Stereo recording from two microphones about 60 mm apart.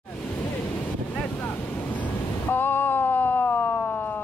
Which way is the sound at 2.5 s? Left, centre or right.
Left.